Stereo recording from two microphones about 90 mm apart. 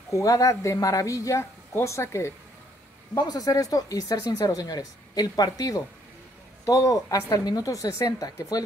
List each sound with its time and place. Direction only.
0.1 s speech: 40° left (ahead or behind)
3.2 s speech: 45° left (ahead or behind)